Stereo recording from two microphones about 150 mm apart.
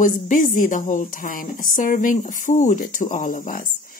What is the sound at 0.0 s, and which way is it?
A woman's voice, 60° left (ahead or behind).